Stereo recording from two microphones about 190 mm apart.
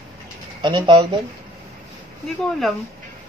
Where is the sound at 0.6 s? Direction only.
25° right (ahead or behind).